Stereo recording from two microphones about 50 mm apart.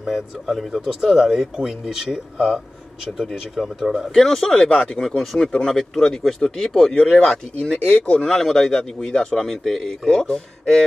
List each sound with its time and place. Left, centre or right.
0.0 s speech: centre
4.1 s speech: centre
5.1 s speech: centre
5.5 s speech: centre
7.2 s speech: centre
8.4 s speech: centre